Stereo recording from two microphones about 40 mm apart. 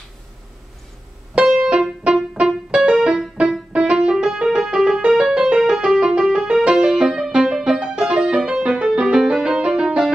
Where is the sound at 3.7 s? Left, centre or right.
Right.